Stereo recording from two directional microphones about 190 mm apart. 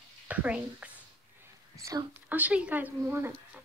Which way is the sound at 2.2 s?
10° right (ahead or behind).